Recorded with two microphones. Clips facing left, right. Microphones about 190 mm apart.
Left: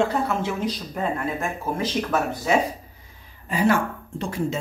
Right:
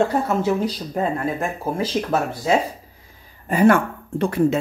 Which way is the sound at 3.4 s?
55° right (ahead or behind).